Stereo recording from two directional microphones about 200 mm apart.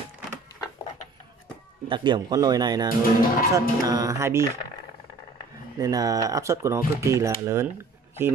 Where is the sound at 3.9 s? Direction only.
15° right (ahead or behind).